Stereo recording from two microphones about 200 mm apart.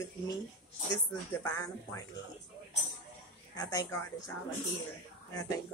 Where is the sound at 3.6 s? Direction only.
15° left (ahead or behind).